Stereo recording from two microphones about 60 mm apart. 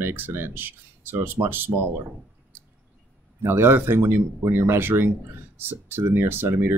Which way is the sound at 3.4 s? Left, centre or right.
Right.